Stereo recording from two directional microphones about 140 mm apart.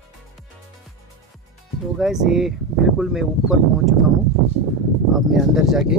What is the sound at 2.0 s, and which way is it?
Speech, 5° right (ahead or behind).